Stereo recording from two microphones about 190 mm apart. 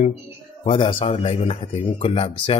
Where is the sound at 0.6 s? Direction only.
25° left (ahead or behind).